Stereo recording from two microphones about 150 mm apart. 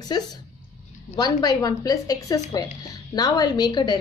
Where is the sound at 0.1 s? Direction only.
30° left (ahead or behind).